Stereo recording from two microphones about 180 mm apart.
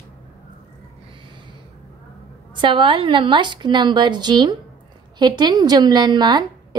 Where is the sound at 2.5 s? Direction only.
30° right (ahead or behind).